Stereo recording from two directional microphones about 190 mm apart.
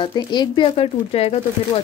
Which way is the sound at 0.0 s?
20° left (ahead or behind).